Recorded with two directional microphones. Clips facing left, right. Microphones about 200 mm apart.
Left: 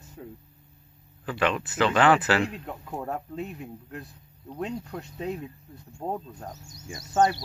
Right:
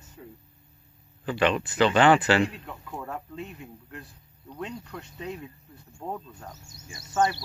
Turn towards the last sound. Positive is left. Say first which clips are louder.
# left 2 dB
turn(degrees=40)  # may be behind; listen again after turning